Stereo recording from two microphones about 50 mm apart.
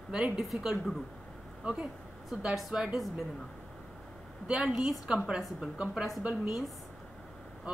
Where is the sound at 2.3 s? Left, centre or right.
Centre.